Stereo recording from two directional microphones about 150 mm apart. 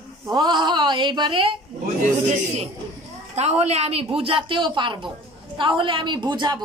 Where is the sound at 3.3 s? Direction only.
45° right (ahead or behind); by 6.6 s 30° right (ahead or behind).